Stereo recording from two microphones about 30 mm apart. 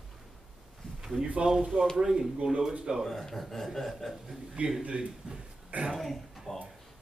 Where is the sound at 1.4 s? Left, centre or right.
Right.